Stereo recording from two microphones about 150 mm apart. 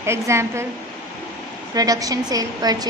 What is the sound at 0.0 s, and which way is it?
Speech, 15° right (ahead or behind).